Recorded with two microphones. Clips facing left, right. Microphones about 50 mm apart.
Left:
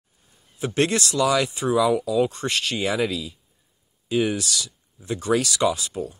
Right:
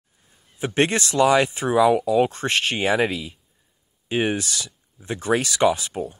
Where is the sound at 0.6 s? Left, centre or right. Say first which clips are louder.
Right 1 dB; right.